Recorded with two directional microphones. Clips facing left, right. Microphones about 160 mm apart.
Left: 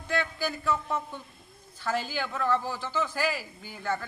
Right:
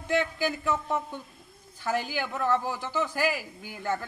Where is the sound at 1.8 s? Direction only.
15° right (ahead or behind).